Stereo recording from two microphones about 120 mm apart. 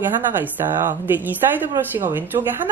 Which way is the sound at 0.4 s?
15° right (ahead or behind).